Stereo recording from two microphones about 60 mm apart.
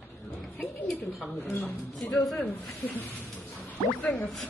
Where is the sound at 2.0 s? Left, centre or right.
Centre.